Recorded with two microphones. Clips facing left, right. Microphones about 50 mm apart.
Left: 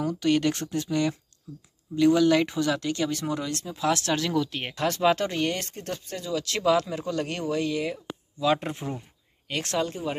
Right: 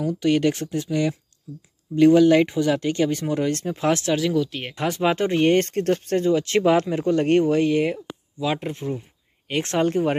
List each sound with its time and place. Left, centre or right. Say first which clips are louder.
0.2 s speech: right 4 dB; centre
2.0 s speech: right 6 dB; right
4.0 s speech: right 4 dB; centre
4.7 s speech: right 1 dB; centre
5.6 s speech: right 13 dB; right
8.5 s speech: right 4 dB; centre
9.5 s speech: right 5 dB; right
9.8 s speech: right 10 dB; right